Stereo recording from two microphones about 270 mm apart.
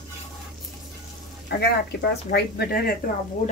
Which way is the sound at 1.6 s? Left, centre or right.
Left.